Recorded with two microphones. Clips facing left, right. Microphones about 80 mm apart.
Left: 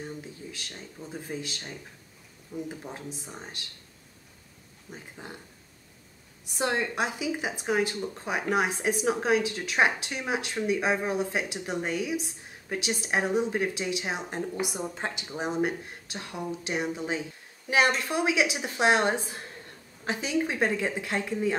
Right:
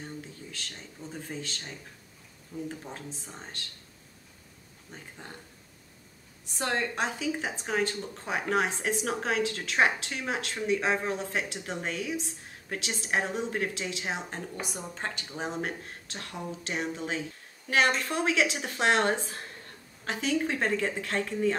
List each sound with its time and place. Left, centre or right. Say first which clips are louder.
0.0 s speech: left 3 dB; centre
2.8 s speech: left 2 dB; centre
4.9 s speech: left 2 dB; centre
6.4 s speech: left 2 dB; centre